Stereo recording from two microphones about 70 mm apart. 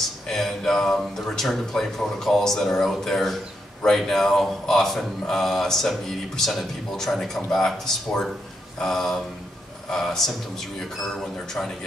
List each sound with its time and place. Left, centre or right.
0.3 s speech: centre